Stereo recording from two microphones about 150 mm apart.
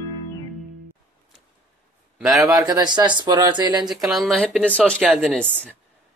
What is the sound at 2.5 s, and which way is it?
Speech, 25° right (ahead or behind).